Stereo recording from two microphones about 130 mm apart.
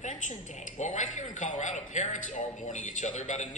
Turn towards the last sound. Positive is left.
turn(degrees=65)  # may be behind; listen again after turning